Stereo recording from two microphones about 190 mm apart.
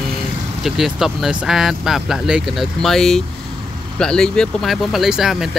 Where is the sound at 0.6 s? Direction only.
Centre (ahead or behind).